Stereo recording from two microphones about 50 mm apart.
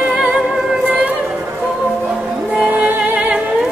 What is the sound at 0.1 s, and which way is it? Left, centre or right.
Music, centre.